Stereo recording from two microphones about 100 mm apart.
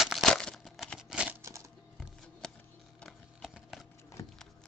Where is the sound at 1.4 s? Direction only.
30° right (ahead or behind).